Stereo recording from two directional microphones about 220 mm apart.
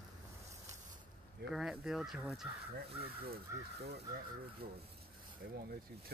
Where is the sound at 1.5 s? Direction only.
Centre (ahead or behind).